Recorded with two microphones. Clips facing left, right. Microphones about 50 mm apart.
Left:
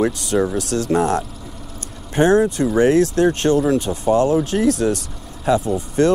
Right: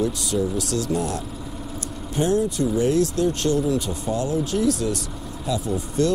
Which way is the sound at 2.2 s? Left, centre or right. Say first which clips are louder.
Left 6 dB; left.